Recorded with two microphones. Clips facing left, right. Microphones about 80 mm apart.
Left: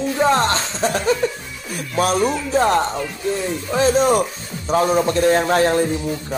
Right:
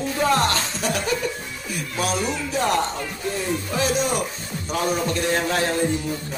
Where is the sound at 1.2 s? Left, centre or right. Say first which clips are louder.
Left 6 dB; left.